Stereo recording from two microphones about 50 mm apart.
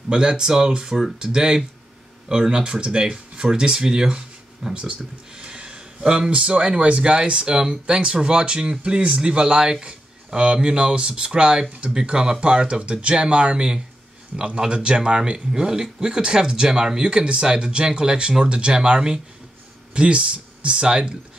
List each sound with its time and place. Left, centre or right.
0.1 s speech: centre
4.7 s a sound: right
6.3 s speech: right